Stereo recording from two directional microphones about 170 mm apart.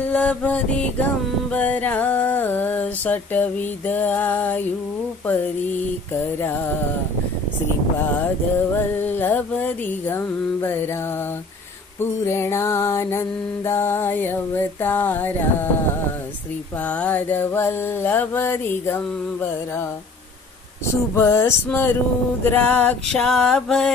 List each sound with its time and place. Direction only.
0.1 s mantra: 5° left (ahead or behind)
1.5 s a sound: 10° left (ahead or behind)
5.3 s mantra: 10° left (ahead or behind)
8.7 s mantra: 10° left (ahead or behind)
12.0 s mantra: 15° left (ahead or behind)
16.8 s mantra: 10° left (ahead or behind)
20.9 s mantra: 15° left (ahead or behind)